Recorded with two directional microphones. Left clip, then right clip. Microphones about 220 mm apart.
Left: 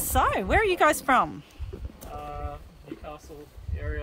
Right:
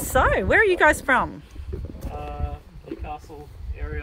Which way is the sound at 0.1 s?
Centre (ahead or behind).